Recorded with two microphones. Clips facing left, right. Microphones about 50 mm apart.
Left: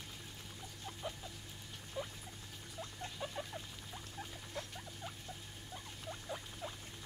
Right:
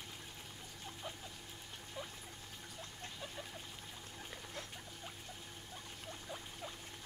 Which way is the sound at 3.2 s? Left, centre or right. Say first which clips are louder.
Left 6 dB; centre.